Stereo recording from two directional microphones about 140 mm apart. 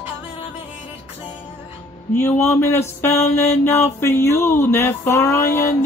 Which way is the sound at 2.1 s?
20° left (ahead or behind).